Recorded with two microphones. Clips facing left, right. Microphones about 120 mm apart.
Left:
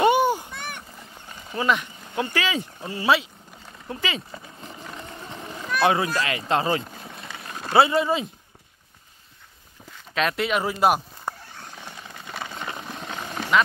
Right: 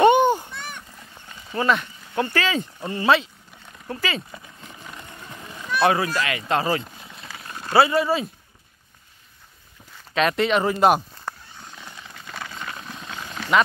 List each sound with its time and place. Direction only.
0.0 s a sound: 10° left (ahead or behind)
1.3 s speech: 10° left (ahead or behind)
4.6 s vehicle: 30° left (ahead or behind)
5.8 s a child's voice: 20° left (ahead or behind)
6.1 s speech: 30° left (ahead or behind)
10.1 s speech: centre (ahead or behind)
11.3 s a sound: 15° left (ahead or behind)